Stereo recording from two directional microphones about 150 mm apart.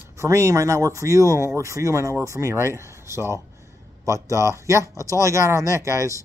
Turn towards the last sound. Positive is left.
turn(degrees=-20)  # may be behind; listen again after turning